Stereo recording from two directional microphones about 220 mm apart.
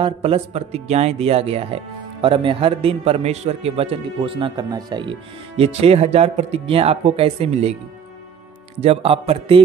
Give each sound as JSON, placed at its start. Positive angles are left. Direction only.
{"t": 0.0, "sound": "a man's voice", "side_deg": -25}
{"t": 8.8, "sound": "a man's voice", "side_deg": -25}